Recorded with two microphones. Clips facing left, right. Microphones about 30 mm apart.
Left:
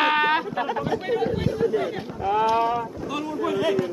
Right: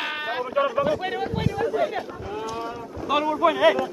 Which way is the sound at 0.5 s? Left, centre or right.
Centre.